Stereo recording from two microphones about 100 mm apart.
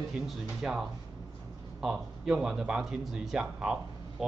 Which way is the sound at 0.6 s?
5° right (ahead or behind).